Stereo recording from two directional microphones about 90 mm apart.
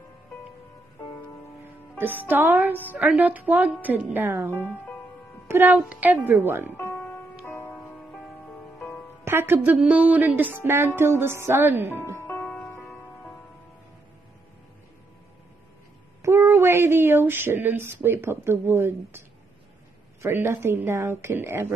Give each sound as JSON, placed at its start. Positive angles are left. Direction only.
{"t": 1.6, "sound": "speech", "side_deg": -20}
{"t": 3.2, "sound": "music", "side_deg": -20}
{"t": 7.0, "sound": "music", "side_deg": 20}
{"t": 9.2, "sound": "speech", "side_deg": -25}
{"t": 9.8, "sound": "music", "side_deg": -15}
{"t": 12.2, "sound": "music", "side_deg": 25}
{"t": 12.4, "sound": "music", "side_deg": 15}
{"t": 16.2, "sound": "a sound", "side_deg": -30}
{"t": 20.2, "sound": "music", "side_deg": -25}